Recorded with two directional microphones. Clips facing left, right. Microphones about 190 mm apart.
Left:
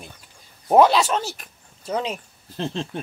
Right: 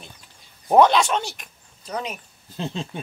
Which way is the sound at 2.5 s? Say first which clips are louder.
Left 2 dB; 5° right (ahead or behind).